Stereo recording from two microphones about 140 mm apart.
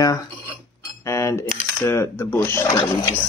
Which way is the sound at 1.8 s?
20° left (ahead or behind).